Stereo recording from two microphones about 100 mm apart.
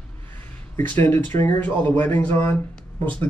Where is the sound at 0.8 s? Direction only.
20° left (ahead or behind).